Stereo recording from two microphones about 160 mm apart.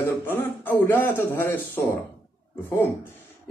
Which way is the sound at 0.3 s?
15° left (ahead or behind).